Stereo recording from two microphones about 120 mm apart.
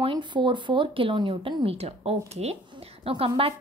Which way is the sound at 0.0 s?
40° right (ahead or behind).